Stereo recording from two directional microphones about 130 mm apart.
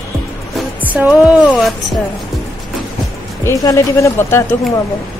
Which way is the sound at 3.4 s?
25° left (ahead or behind).